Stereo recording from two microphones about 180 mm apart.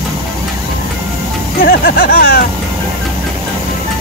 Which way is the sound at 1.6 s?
55° left (ahead or behind).